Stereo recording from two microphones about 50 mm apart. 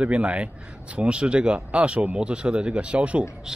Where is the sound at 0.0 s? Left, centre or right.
Right.